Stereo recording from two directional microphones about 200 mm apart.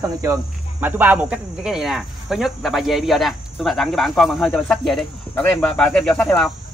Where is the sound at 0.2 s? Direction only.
10° right (ahead or behind).